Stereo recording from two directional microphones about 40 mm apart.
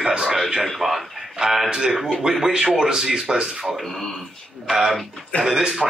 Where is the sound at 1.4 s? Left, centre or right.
Centre.